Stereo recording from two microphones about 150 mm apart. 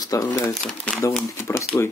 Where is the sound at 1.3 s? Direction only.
15° left (ahead or behind).